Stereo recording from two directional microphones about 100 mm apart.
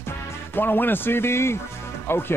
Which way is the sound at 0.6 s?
20° left (ahead or behind).